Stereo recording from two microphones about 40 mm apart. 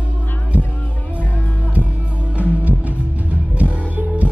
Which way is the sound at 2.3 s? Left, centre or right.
Right.